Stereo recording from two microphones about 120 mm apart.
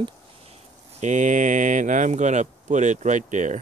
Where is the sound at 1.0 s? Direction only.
90° right.